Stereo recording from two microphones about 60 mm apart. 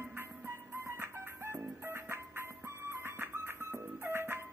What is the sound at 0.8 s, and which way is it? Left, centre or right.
Music, right.